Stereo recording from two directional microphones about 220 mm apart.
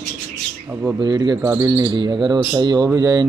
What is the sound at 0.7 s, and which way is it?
Speech, 10° right (ahead or behind).